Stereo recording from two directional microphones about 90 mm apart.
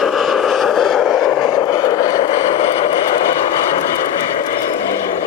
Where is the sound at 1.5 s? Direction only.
50° left (ahead or behind).